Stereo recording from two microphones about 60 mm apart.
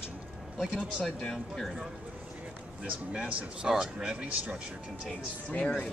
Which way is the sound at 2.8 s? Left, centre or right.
Centre.